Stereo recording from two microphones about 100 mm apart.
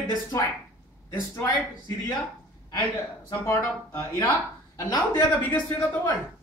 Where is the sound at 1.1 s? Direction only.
20° left (ahead or behind).